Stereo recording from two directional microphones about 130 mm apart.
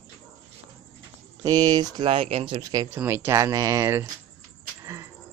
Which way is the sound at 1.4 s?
30° right (ahead or behind).